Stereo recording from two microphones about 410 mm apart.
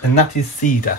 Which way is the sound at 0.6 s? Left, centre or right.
Centre.